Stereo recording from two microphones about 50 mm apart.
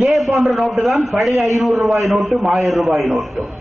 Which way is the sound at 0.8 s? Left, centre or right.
Centre.